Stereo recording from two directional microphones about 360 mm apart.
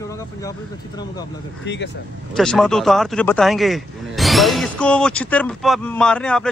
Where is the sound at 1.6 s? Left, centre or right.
Left.